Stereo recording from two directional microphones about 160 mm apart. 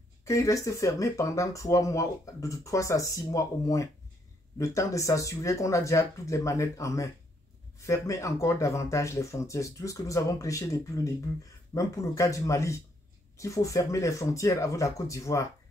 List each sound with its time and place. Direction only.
0.2 s speech: 20° left (ahead or behind)